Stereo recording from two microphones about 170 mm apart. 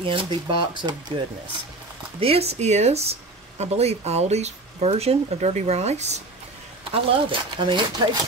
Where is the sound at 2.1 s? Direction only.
35° right (ahead or behind).